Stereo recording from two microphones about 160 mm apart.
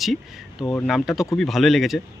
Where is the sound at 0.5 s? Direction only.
20° left (ahead or behind).